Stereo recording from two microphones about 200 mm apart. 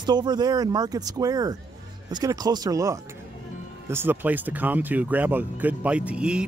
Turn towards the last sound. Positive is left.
turn(degrees=-5)  # may be behind; listen again after turning